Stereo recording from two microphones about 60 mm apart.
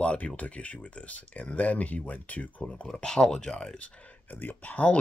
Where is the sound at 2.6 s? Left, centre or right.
Centre.